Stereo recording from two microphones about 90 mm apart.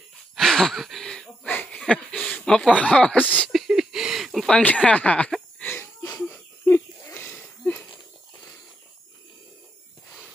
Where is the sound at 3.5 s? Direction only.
5° right (ahead or behind).